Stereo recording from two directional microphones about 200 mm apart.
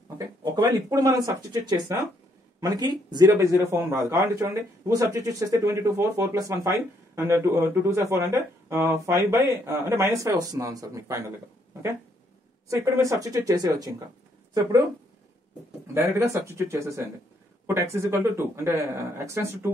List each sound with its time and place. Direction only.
0.4 s speech: 20° right (ahead or behind)
12.6 s speech: 15° right (ahead or behind)
15.9 s speech: 15° right (ahead or behind)